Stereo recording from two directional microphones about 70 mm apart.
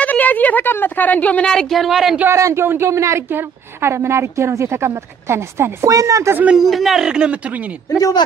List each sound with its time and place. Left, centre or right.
0.0 s a woman's voice: left
1.5 s speech: centre
2.2 s a woman's voice: right
6.5 s speech: centre